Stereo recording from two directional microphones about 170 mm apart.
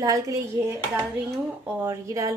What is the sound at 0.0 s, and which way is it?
Speech, 20° right (ahead or behind).